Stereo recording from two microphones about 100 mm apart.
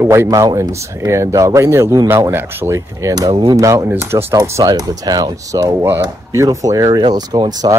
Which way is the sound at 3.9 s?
25° right (ahead or behind).